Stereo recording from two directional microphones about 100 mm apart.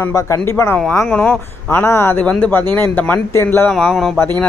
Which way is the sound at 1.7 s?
25° left (ahead or behind).